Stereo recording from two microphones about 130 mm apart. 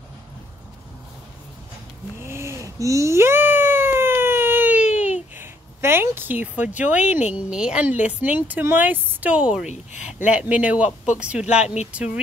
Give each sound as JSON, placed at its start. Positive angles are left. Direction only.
{"t": 2.1, "sound": "babbling", "side_deg": -20}
{"t": 5.4, "sound": "speech", "side_deg": -20}
{"t": 11.4, "sound": "speech", "side_deg": 60}